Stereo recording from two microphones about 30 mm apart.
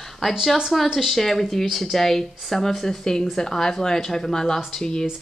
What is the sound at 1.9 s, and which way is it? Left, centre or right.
Speech, centre.